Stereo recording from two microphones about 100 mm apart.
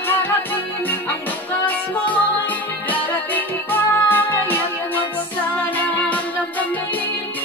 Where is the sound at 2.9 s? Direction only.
20° left (ahead or behind).